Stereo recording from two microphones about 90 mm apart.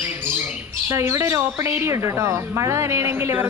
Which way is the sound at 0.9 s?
30° right (ahead or behind).